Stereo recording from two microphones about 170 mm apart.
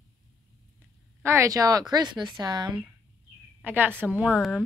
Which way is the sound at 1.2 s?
15° right (ahead or behind).